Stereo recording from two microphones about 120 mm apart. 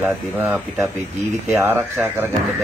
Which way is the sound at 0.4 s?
15° right (ahead or behind).